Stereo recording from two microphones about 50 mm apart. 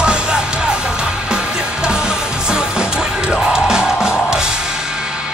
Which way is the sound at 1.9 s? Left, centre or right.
Centre.